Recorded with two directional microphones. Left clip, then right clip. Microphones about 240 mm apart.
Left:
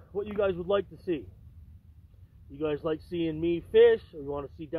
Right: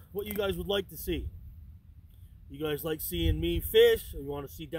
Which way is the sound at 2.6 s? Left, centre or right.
Right.